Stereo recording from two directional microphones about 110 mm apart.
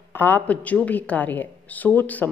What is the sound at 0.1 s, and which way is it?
A woman's voice, 15° left (ahead or behind).